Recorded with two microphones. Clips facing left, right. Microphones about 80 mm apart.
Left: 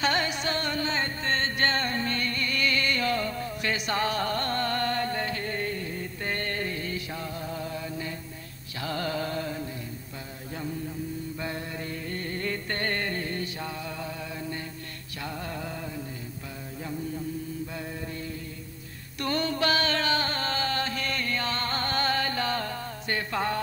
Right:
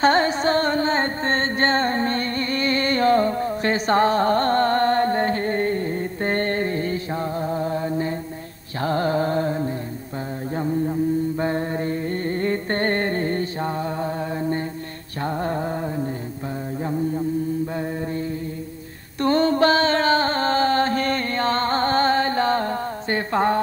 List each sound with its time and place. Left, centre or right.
0.0 s music: right
8.8 s carnatic music: right
10.5 s mantra: right
15.2 s a sound: right
19.1 s music: right